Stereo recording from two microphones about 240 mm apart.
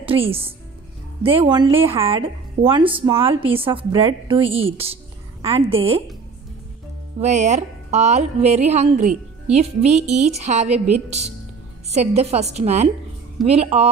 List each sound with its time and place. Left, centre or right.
0.0 s a woman's voice: right
7.2 s a woman's voice: right
11.9 s a woman's voice: right